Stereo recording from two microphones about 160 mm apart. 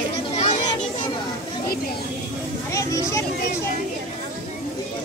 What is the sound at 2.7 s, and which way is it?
Vehicle, 20° left (ahead or behind).